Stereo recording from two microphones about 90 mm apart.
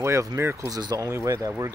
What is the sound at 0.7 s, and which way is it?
Speech, 45° right (ahead or behind).